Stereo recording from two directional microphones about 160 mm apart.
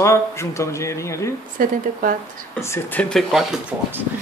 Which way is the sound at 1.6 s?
60° right (ahead or behind).